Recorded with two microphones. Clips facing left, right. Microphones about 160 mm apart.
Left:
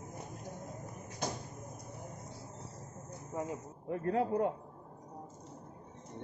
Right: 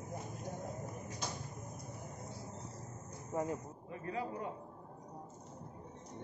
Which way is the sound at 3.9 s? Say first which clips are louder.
Left 9 dB; 60° left (ahead or behind).